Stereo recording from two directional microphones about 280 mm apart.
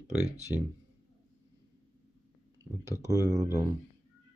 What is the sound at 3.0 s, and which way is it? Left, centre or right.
Speech, centre.